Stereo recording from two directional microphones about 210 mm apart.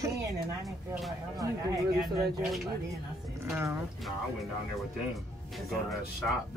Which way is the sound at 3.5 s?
10° right (ahead or behind).